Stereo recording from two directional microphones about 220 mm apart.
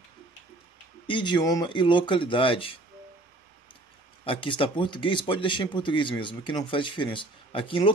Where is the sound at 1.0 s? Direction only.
20° left (ahead or behind).